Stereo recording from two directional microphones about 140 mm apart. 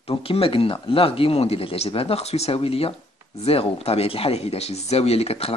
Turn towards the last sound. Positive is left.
turn(degrees=45)  # may be behind; listen again after turning